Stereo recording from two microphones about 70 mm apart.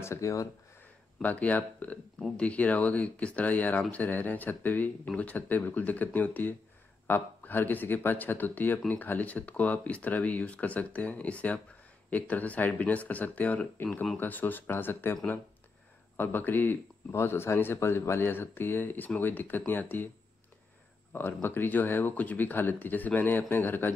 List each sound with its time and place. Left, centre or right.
0.0 s speech: left
1.2 s speech: left
16.2 s speech: left
21.1 s speech: left